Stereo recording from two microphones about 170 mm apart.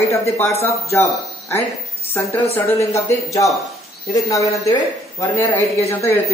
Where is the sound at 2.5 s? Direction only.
15° left (ahead or behind).